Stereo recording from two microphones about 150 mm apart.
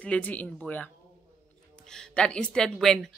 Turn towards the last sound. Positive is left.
turn(degrees=5)  # may be behind; listen again after turning